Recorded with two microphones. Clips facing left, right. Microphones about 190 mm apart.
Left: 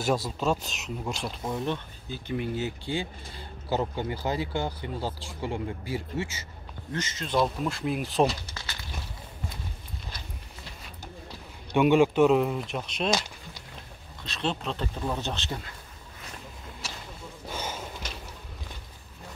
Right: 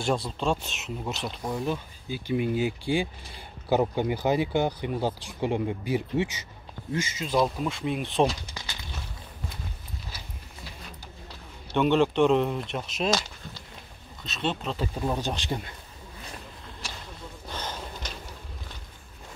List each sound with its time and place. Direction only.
0.7 s speech: centre (ahead or behind)
8.5 s a sound: 15° right (ahead or behind)
11.7 s speech: 10° left (ahead or behind)
14.2 s speech: centre (ahead or behind)
17.5 s snort: 10° left (ahead or behind)